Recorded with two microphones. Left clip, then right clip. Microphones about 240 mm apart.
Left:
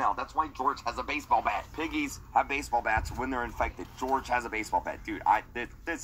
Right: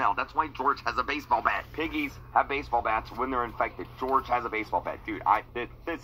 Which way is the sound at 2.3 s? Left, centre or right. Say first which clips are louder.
Right 2 dB; left.